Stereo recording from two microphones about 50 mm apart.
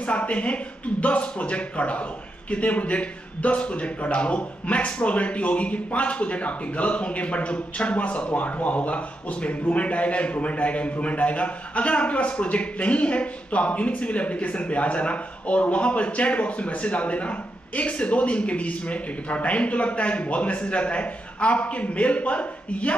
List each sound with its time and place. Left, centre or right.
0.0 s speech: left